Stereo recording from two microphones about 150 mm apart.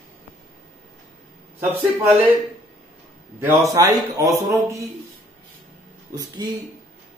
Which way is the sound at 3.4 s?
15° right (ahead or behind).